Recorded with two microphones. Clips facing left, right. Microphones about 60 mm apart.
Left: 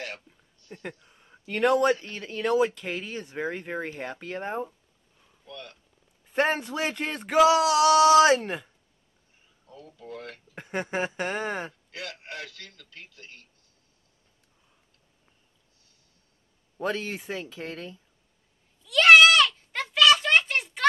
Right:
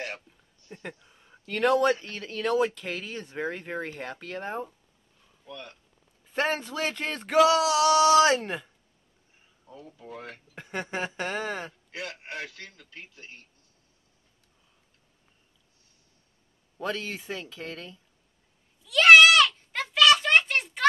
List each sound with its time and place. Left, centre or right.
0.7 s speech: centre
1.1 s a sound: centre
2.0 s speech: centre
5.5 s a man's voice: right
6.3 s speech: centre
9.7 s speech: centre
10.5 s speech: centre
11.9 s a man's voice: right
16.7 s a man's voice: centre
18.9 s goat: centre